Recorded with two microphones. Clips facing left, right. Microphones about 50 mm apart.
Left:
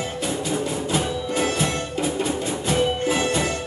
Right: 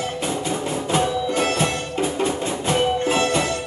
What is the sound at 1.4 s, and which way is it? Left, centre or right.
Music, right.